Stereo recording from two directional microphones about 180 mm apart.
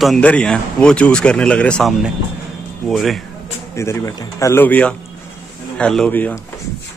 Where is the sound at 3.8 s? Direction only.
15° left (ahead or behind).